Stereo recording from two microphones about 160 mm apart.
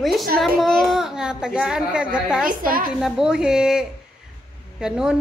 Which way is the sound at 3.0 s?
5° right (ahead or behind).